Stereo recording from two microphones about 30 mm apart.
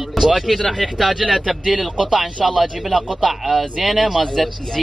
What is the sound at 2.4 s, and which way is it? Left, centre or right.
Speech, centre.